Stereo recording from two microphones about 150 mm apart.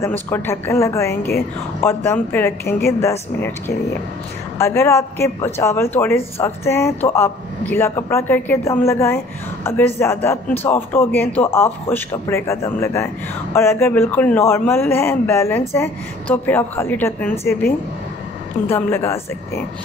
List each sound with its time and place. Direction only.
0.0 s a man's voice: 15° left (ahead or behind)